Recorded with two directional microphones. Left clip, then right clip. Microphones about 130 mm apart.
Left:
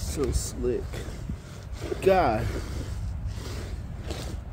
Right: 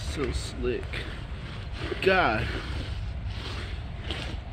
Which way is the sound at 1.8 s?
20° left (ahead or behind).